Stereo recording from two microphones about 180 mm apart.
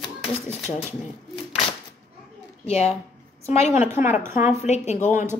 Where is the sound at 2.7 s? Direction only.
35° left (ahead or behind).